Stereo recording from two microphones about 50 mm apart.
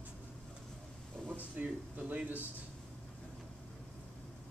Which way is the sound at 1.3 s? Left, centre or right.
Right.